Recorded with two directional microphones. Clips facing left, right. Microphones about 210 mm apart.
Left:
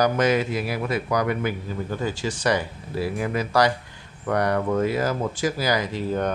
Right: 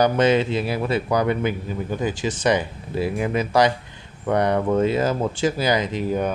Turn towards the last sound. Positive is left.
turn(degrees=-10)  # may be behind; listen again after turning